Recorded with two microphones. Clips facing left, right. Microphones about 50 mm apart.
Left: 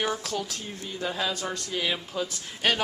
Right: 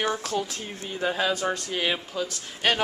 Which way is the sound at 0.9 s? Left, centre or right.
Right.